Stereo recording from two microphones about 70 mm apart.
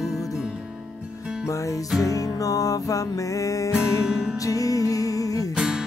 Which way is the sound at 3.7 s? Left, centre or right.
Centre.